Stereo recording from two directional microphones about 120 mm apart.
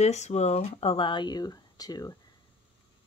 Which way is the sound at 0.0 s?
65° left (ahead or behind).